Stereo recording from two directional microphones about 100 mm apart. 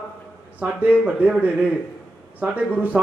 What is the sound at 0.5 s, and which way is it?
A man's voice, 15° right (ahead or behind).